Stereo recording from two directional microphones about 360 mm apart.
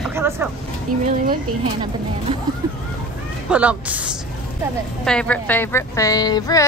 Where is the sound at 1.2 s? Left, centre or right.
Centre.